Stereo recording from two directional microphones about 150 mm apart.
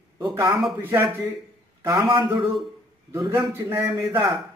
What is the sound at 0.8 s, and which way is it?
Speech, 15° right (ahead or behind).